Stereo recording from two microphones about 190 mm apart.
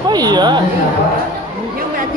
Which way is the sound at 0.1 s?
20° right (ahead or behind).